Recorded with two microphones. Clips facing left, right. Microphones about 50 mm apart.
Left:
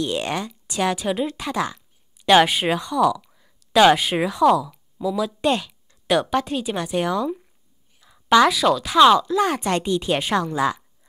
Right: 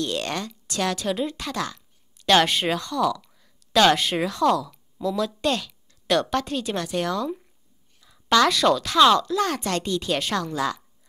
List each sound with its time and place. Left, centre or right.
0.0 s a woman's voice: centre